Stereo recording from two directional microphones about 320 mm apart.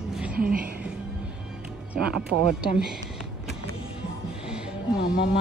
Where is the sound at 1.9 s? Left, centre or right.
Centre.